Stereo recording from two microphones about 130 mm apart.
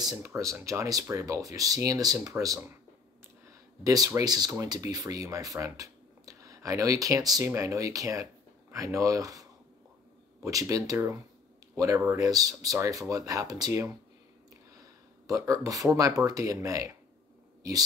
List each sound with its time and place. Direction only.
0.2 s speech: 20° right (ahead or behind)
3.8 s speech: 25° right (ahead or behind)